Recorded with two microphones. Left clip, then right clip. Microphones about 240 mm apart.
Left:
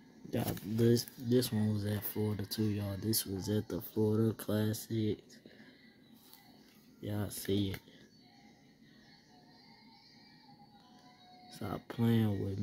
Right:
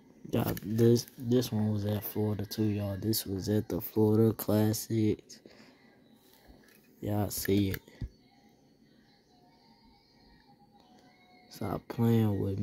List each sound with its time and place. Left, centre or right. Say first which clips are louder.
0.3 s speech: right 5 dB; right
7.0 s speech: right 7 dB; right
11.4 s speech: right 5 dB; centre